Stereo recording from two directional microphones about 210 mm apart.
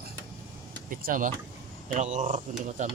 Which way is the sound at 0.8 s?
40° right (ahead or behind).